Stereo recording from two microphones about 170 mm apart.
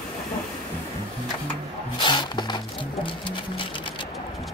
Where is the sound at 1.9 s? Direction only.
25° left (ahead or behind).